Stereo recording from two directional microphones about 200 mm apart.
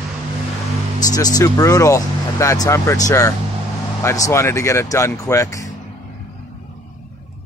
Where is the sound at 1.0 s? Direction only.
20° left (ahead or behind).